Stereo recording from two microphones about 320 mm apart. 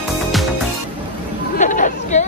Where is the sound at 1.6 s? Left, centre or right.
Left.